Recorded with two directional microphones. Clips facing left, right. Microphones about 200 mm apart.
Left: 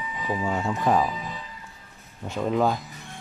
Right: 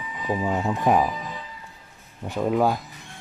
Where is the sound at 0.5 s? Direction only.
15° right (ahead or behind).